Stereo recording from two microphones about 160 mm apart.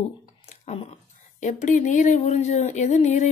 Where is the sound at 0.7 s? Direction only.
45° left (ahead or behind).